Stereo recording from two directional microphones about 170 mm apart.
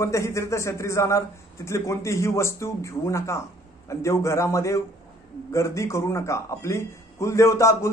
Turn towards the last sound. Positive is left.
turn(degrees=15)  # may be behind; listen again after turning